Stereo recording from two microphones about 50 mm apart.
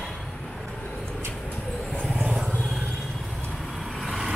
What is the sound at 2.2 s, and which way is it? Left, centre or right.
Vehicle, centre.